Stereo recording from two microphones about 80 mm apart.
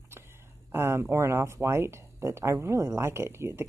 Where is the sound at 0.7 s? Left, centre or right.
Right.